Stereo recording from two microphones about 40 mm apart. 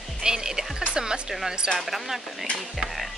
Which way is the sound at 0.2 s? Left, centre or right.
Centre.